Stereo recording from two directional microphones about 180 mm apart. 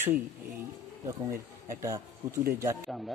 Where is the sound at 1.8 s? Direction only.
15° right (ahead or behind).